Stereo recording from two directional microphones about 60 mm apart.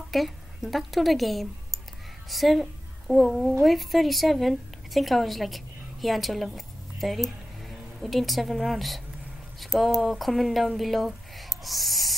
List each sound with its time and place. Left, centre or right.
0.1 s a woman's voice: centre